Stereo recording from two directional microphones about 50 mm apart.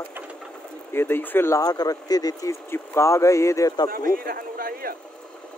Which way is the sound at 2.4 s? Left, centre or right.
Left.